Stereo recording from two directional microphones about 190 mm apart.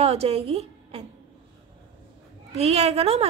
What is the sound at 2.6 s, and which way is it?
Speech, 35° right (ahead or behind).